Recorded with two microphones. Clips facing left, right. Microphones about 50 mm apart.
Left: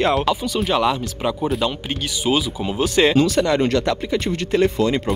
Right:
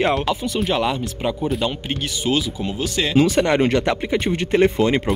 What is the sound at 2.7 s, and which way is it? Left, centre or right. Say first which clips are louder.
Speech: left 8 dB; left.